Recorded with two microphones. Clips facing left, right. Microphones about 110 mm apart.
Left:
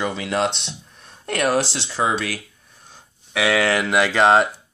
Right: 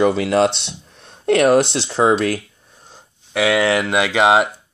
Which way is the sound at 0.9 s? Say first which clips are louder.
Right 10 dB; 30° right (ahead or behind).